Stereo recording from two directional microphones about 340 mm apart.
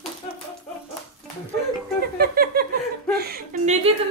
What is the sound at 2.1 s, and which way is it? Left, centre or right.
Speech, right.